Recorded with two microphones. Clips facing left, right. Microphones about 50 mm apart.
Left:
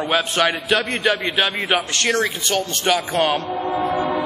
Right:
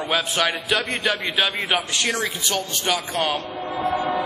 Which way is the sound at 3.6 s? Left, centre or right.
Left.